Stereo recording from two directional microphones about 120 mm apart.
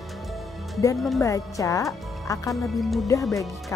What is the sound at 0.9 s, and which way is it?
Speech, centre (ahead or behind).